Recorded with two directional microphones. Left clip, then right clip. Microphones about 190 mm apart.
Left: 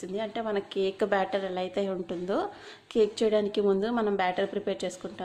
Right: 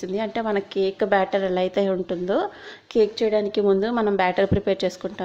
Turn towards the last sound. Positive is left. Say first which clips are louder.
# right 9 dB
turn(degrees=-20)  # may be behind; listen again after turning